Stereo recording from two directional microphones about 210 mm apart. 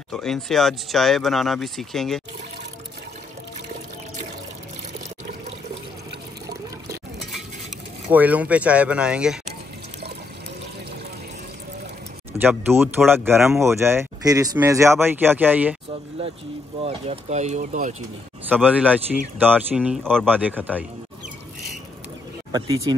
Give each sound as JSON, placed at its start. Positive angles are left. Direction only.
{"t": 0.1, "sound": "speech", "side_deg": 0}
{"t": 8.1, "sound": "speech", "side_deg": -5}
{"t": 12.3, "sound": "speech", "side_deg": -10}
{"t": 16.8, "sound": "speech", "side_deg": -30}
{"t": 18.5, "sound": "speech", "side_deg": -5}
{"t": 20.2, "sound": "speech", "side_deg": -10}
{"t": 22.5, "sound": "speech", "side_deg": -20}